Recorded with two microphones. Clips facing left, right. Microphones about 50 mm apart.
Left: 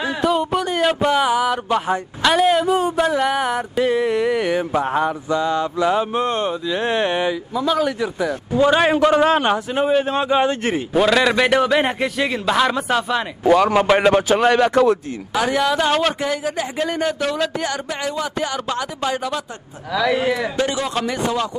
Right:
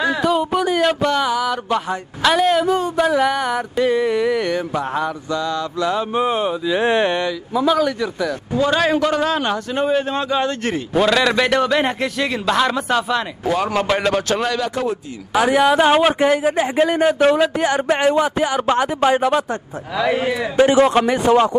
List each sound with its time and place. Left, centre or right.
0.2 s a sound: centre
1.1 s a man's voice: centre
2.2 s a man's voice: centre
6.1 s speech: centre
7.7 s a man's voice: centre
8.5 s a man's voice: left
9.8 s a man's voice: centre
15.3 s speech: centre
16.2 s speech: right
17.8 s speech: right
20.2 s speech: centre
20.7 s speech: right